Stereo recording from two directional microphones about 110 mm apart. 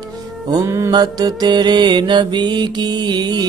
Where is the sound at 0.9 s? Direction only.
35° right (ahead or behind).